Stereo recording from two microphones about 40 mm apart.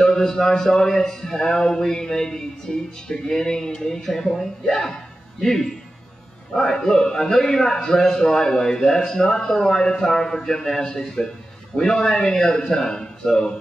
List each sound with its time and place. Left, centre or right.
0.0 s speech: centre